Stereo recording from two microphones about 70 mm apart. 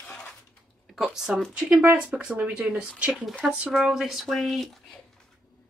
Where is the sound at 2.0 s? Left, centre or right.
Centre.